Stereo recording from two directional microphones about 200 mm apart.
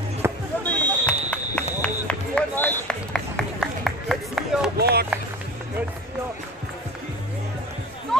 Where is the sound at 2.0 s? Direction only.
5° left (ahead or behind).